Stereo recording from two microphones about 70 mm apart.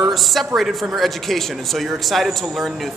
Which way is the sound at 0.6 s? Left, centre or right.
Centre.